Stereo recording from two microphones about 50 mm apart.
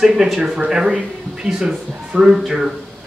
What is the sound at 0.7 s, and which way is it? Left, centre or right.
Speech, centre.